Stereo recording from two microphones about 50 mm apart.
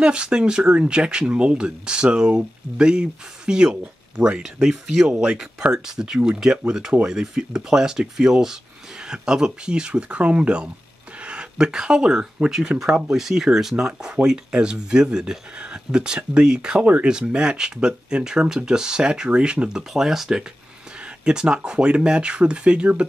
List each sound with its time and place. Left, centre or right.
0.0 s speech: centre
5.1 s speech: right
19.9 s speech: centre